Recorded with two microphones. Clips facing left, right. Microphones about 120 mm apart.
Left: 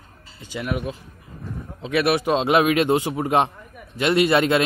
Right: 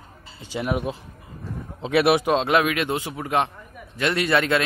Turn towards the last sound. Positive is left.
turn(degrees=20)  # may be behind; listen again after turning